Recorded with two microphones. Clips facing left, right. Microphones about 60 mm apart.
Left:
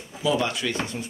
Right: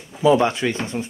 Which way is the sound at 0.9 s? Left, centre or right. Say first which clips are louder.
Right 6 dB; right.